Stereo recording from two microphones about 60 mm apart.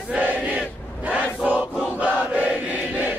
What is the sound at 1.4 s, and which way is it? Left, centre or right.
Choir, right.